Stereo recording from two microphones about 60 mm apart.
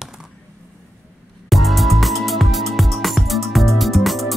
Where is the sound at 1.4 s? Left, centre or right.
Centre.